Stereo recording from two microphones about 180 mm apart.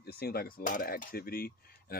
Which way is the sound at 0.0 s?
60° left (ahead or behind).